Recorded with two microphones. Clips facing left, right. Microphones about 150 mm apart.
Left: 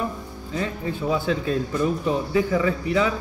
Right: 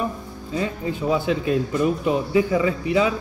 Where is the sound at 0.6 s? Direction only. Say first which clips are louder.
Right 2 dB; 20° right (ahead or behind).